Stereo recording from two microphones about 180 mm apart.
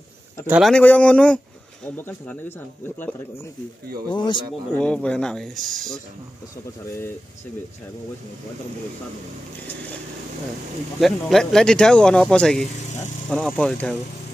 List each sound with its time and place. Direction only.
0.5 s speech: centre (ahead or behind)
4.1 s speech: 25° left (ahead or behind)
4.7 s speech: 5° left (ahead or behind)
11.0 s speech: centre (ahead or behind)